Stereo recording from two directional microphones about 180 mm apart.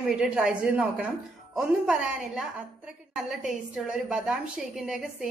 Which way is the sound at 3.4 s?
5° right (ahead or behind).